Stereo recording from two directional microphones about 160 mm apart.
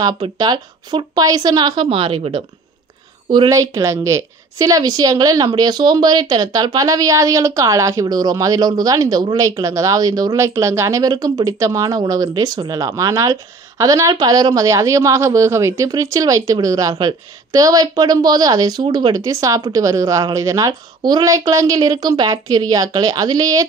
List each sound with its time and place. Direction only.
0.0 s a woman's voice: 25° right (ahead or behind)
3.3 s a woman's voice: 25° right (ahead or behind)